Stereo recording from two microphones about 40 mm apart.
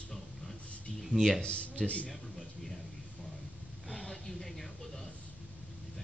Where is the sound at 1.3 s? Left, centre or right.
Left.